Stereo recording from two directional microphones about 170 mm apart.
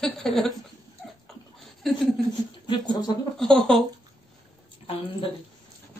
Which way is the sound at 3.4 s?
5° left (ahead or behind).